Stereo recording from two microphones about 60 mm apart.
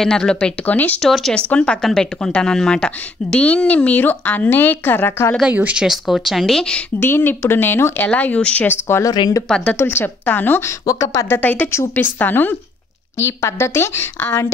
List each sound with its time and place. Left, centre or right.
0.0 s a woman's voice: centre
0.7 s a woman's voice: left
1.0 s speech: centre
1.5 s a woman's voice: centre
1.8 s a woman's voice: centre; by 5.3 s left
5.5 s speech: right
5.8 s speech: centre
7.0 s speech: left
8.1 s a woman's voice: left
8.6 s a woman's voice: left
10.9 s speech: left
11.2 s speech: left
13.2 s a woman's voice: left